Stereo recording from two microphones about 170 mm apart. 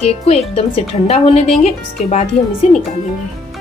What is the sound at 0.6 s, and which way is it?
A woman's voice, 40° left (ahead or behind).